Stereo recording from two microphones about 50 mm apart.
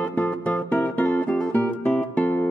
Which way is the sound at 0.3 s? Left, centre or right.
Left.